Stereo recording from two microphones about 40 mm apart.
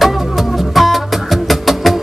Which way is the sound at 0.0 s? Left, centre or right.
Centre.